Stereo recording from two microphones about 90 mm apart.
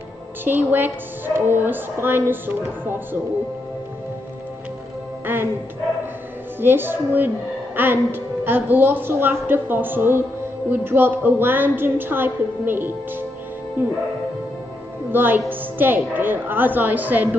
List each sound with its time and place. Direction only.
0.5 s speech: 20° right (ahead or behind)
5.2 s music: 25° right (ahead or behind)
6.6 s speech: 25° right (ahead or behind)
15.0 s speech: 25° right (ahead or behind)